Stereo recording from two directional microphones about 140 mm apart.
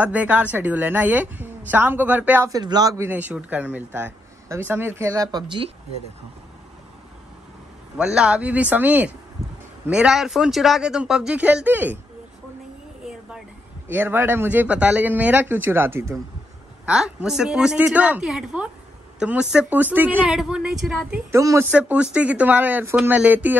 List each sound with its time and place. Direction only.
0.0 s speech: 10° right (ahead or behind)
2.5 s a man's voice: 30° right (ahead or behind)
3.1 s speech: 10° right (ahead or behind); by 5.7 s 30° right (ahead or behind)
8.0 s a man's voice: 5° right (ahead or behind)
13.8 s speech: 15° right (ahead or behind)
16.8 s a man's voice: 5° right (ahead or behind)
21.3 s a man's voice: 20° right (ahead or behind)
21.6 s speech: 10° right (ahead or behind)